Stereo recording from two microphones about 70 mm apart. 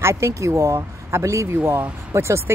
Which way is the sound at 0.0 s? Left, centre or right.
Right.